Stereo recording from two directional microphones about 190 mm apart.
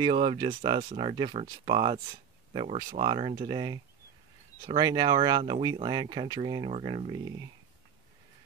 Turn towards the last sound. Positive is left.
turn(degrees=-25)  # may be behind; listen again after turning